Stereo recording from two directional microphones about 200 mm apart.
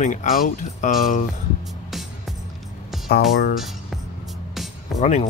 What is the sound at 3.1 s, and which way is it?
Speech, 50° left (ahead or behind).